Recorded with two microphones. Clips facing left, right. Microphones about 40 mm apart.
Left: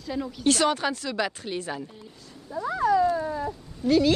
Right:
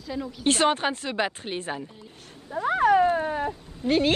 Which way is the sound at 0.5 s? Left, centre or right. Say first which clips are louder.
Right 1 dB; right.